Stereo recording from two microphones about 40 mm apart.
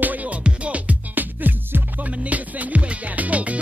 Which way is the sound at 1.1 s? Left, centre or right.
Right.